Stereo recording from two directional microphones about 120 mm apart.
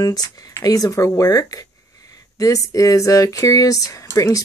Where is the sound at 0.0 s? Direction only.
30° left (ahead or behind).